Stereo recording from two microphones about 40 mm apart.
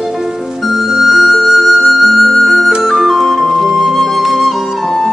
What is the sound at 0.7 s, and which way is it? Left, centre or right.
Flute, centre.